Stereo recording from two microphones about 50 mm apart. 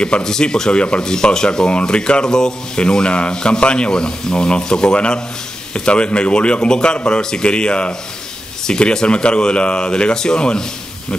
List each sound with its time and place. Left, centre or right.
0.0 s speech: centre